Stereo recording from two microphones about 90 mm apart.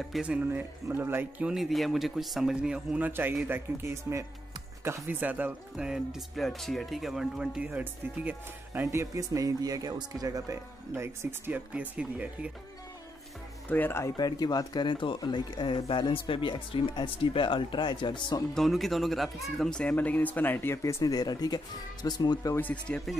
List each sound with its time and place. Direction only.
0.2 s speech: 10° right (ahead or behind)
0.5 s speech: 20° right (ahead or behind)
1.4 s speech: 5° right (ahead or behind)
3.1 s speech: 20° right (ahead or behind)
8.8 s speech: 35° right (ahead or behind)
11.4 s speech: 20° right (ahead or behind)
13.7 s speech: 20° left (ahead or behind)
14.1 s speech: 50° left (ahead or behind)
15.9 s speech: 70° left (ahead or behind)
18.5 s speech: centre (ahead or behind); by 20.8 s 25° left (ahead or behind)
21.0 s speech: 45° left (ahead or behind)
22.6 s speech: 15° left (ahead or behind)